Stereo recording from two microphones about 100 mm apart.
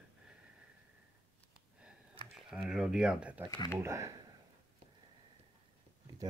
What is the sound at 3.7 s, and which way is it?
Speech, 30° right (ahead or behind).